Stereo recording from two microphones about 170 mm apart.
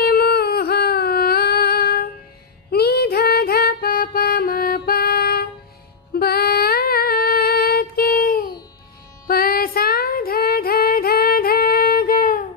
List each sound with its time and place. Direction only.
0.0 s a sound: 65° left (ahead or behind)
2.7 s music: 65° left (ahead or behind)
6.1 s female singing: 65° left (ahead or behind)